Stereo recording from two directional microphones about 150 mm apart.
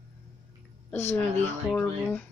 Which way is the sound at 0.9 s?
15° left (ahead or behind).